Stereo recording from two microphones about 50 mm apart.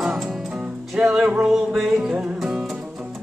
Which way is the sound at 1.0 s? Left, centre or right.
Centre.